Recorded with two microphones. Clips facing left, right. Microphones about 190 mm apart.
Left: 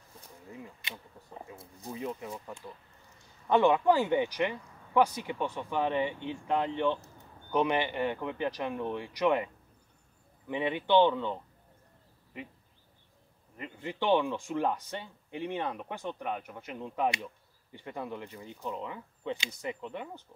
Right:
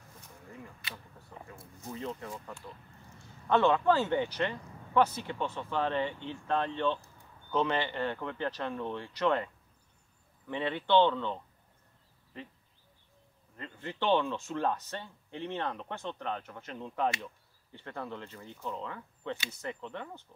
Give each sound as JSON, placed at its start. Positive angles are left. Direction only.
{"t": 0.5, "sound": "a sound", "side_deg": 20}
{"t": 1.9, "sound": "speech", "side_deg": 15}
{"t": 10.5, "sound": "speech", "side_deg": 15}
{"t": 13.6, "sound": "speech", "side_deg": 15}